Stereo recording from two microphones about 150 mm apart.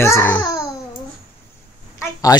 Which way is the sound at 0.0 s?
15° left (ahead or behind).